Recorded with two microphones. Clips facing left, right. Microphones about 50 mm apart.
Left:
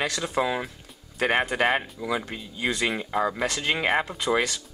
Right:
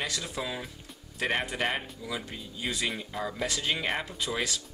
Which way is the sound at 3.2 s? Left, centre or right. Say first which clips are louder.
Left 7 dB; left.